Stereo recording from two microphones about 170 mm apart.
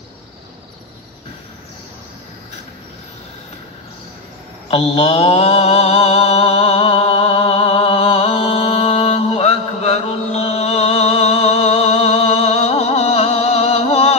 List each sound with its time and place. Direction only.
4.6 s mantra: 35° left (ahead or behind)